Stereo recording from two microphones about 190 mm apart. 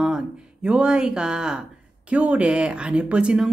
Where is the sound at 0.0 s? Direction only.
5° right (ahead or behind).